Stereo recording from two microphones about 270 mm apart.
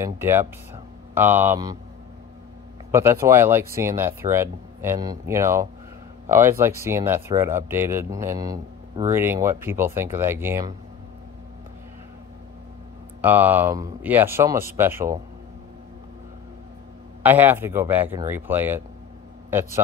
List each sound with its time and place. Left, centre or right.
0.0 s speech: centre
2.9 s speech: centre
13.2 s speech: centre
17.2 s speech: centre